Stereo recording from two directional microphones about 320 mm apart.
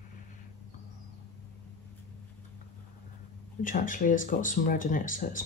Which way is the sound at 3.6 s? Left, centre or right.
Left.